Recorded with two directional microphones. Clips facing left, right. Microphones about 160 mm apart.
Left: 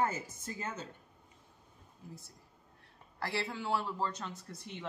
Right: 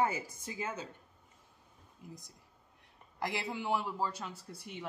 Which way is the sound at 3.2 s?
15° right (ahead or behind).